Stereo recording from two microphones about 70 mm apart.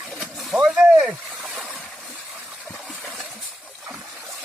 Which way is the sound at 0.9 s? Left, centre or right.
Centre.